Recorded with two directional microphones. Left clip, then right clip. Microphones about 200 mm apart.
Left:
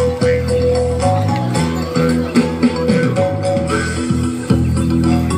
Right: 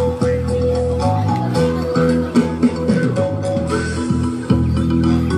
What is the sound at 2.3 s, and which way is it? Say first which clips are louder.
Music: left 2 dB; 50° right (ahead or behind).